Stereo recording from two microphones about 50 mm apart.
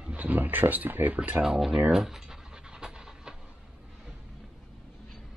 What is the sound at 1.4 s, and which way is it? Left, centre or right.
Speech, centre.